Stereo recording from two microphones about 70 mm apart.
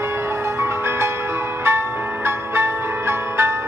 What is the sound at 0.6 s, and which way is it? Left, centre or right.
Music, right.